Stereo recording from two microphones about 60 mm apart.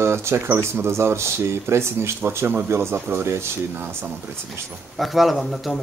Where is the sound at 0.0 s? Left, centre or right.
Right.